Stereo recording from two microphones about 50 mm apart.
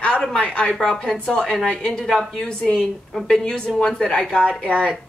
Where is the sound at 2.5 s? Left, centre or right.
Centre.